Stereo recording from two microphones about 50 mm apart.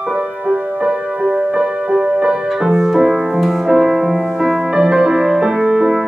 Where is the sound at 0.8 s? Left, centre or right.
Centre.